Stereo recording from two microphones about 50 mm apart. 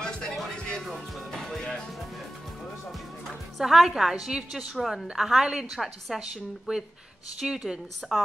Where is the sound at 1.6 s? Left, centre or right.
Centre.